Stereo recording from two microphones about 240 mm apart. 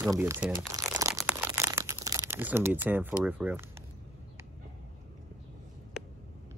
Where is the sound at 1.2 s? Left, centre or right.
Centre.